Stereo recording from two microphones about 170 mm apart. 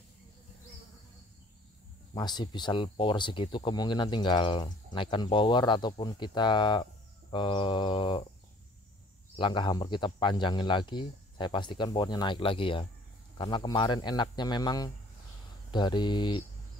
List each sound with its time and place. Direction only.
2.1 s speech: 25° left (ahead or behind)
9.4 s speech: 25° left (ahead or behind)